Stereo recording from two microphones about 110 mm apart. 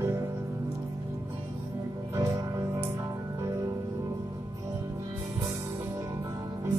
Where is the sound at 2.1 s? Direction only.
35° right (ahead or behind).